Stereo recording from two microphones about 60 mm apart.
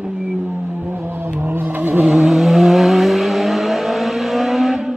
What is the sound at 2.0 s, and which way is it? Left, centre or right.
Vehicle, centre.